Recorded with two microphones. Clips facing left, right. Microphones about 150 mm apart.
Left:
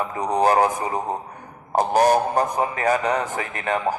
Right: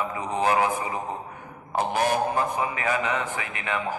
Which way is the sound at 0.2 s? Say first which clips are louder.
Left 5 dB; 40° left (ahead or behind).